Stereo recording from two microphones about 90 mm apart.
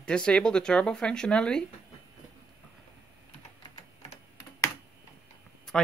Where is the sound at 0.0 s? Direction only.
10° left (ahead or behind).